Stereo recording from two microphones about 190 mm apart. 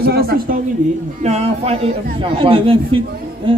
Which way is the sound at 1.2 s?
35° right (ahead or behind).